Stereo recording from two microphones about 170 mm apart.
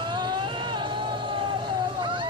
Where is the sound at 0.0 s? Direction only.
25° right (ahead or behind).